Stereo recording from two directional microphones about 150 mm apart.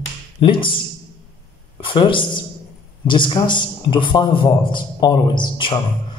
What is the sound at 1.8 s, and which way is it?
A man's voice, 35° left (ahead or behind).